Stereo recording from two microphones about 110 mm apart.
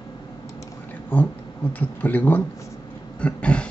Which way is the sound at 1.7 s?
15° left (ahead or behind).